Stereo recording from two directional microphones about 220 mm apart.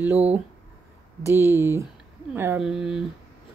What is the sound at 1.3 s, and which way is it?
A woman's voice, 10° right (ahead or behind).